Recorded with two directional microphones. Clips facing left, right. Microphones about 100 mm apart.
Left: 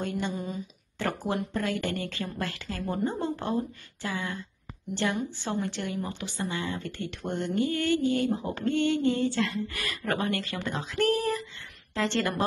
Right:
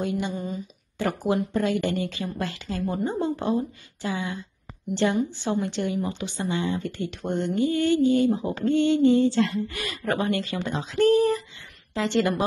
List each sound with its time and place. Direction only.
0.0 s speech: 10° right (ahead or behind)
0.3 s speech: centre (ahead or behind)
0.9 s speech: 15° right (ahead or behind)